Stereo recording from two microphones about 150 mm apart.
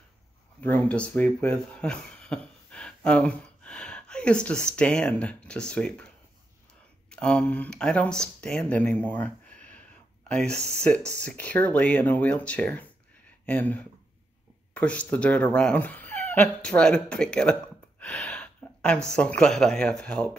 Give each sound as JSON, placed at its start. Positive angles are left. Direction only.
{"t": 0.6, "sound": "speech", "side_deg": 10}